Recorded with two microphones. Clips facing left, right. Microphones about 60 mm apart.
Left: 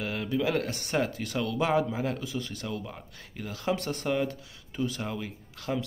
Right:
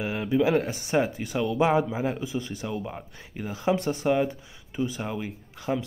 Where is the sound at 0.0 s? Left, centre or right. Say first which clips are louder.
Right 5 dB; centre.